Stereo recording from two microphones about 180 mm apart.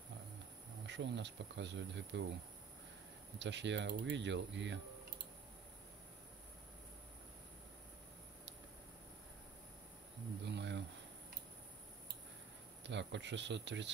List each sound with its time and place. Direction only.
0.8 s insect: 75° right (ahead or behind)
3.3 s speech: 80° right
10.5 s insect: 75° right (ahead or behind)
12.8 s speech: 80° right